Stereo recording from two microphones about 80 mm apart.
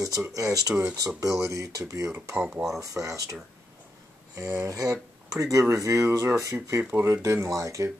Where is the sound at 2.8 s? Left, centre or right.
Right.